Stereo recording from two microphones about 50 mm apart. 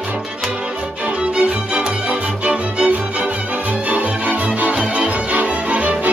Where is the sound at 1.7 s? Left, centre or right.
Right.